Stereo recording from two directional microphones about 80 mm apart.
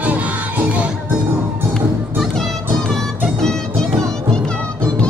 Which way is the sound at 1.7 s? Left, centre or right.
Centre.